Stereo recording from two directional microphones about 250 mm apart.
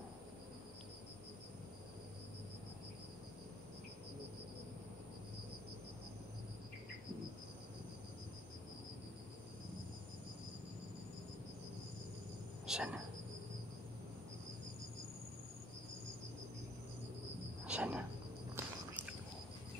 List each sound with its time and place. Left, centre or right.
12.6 s speech: centre
17.6 s wild animals: centre
18.6 s walk: centre